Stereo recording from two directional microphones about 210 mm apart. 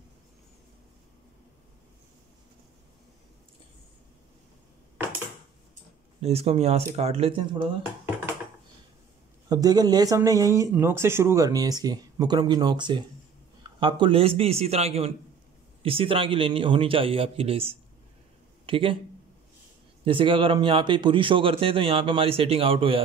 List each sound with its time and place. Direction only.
6.2 s a man's voice: 30° right (ahead or behind)
9.5 s a man's voice: 20° right (ahead or behind)
20.1 s a man's voice: 25° right (ahead or behind)